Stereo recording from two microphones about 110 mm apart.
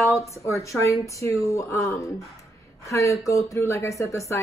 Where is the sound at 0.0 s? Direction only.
25° left (ahead or behind).